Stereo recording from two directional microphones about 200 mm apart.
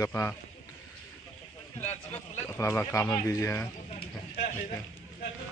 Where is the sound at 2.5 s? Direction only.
10° left (ahead or behind).